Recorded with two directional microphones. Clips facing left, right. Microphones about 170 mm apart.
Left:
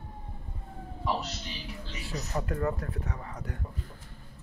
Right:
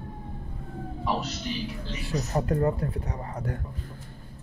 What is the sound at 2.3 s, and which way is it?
Speech, 35° right (ahead or behind).